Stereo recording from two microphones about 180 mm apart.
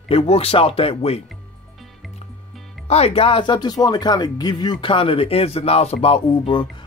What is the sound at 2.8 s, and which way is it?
Speech, 35° left (ahead or behind).